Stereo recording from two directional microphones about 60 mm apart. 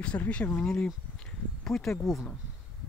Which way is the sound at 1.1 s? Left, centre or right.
Centre.